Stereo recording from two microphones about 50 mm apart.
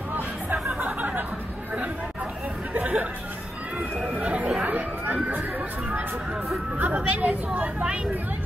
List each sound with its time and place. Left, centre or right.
0.7 s a sound: right
2.7 s chatter: right
4.2 s chatter: right
4.6 s a sound: right
6.8 s speech: right
7.8 s speech: centre